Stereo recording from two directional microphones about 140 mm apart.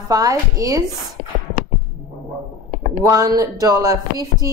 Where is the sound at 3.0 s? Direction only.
25° right (ahead or behind).